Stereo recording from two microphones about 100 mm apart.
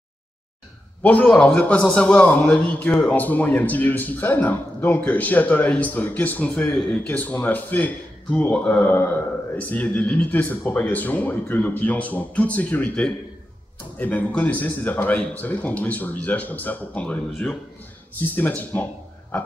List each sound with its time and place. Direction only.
1.0 s a man's voice: 15° left (ahead or behind)
9.6 s a man's voice: 15° left (ahead or behind)